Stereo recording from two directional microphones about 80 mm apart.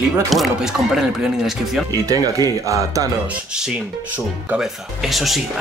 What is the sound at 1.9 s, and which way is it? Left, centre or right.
Speech, right.